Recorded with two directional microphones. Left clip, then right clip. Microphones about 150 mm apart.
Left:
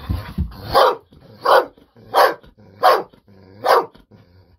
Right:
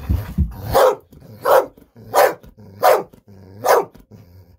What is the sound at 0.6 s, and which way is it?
Dog, 20° right (ahead or behind).